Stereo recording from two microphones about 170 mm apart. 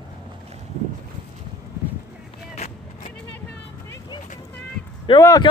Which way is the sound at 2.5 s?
40° left (ahead or behind).